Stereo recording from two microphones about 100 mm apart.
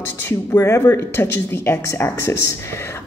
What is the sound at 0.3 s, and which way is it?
Speech, 25° left (ahead or behind).